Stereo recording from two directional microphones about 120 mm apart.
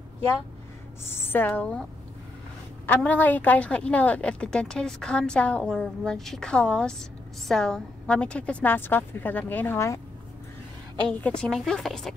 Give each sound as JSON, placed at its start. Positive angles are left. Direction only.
{"t": 1.0, "sound": "a woman's voice", "side_deg": 20}
{"t": 2.9, "sound": "a woman's voice", "side_deg": 15}
{"t": 11.1, "sound": "a woman's voice", "side_deg": 10}